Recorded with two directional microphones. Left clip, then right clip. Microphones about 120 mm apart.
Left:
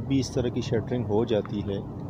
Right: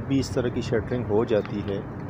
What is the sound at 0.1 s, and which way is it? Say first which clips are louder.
Speech: right 2 dB; 30° left (ahead or behind).